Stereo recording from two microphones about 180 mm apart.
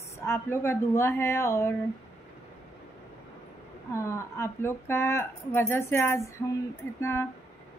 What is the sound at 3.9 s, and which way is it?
A woman's voice, 15° left (ahead or behind).